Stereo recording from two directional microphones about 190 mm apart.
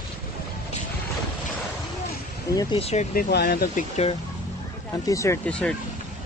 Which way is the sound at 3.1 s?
55° left (ahead or behind).